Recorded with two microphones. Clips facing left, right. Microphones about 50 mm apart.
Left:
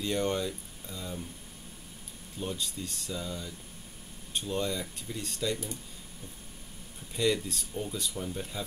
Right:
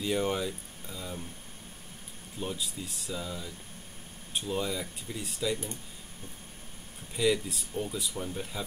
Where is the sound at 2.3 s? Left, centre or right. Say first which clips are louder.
Even; centre.